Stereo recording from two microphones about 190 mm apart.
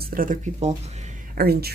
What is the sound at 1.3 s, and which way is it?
Speech, 55° right (ahead or behind).